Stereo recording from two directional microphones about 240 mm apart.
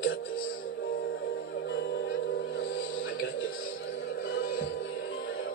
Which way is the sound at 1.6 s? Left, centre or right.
Left.